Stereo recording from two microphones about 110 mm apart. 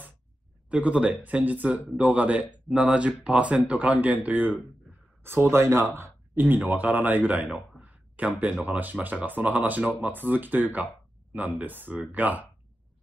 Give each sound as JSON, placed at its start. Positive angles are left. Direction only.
{"t": 0.7, "sound": "speech", "side_deg": -10}